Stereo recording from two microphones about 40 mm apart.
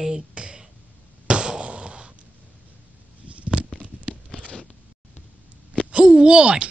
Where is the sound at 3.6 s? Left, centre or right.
Right.